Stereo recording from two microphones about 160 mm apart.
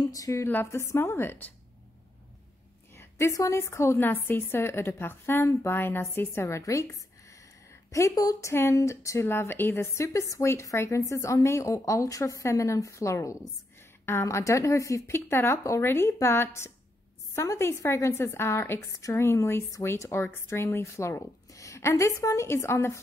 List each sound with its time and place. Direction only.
0.0 s a woman's voice: 20° left (ahead or behind)
2.9 s a woman's voice: 15° left (ahead or behind)